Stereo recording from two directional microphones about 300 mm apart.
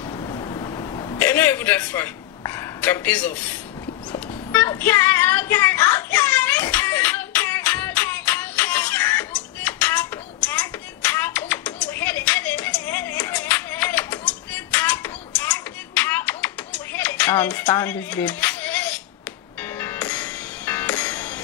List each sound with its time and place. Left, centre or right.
0.2 s hiccup: centre
1.2 s a sound: centre
19.8 s music: centre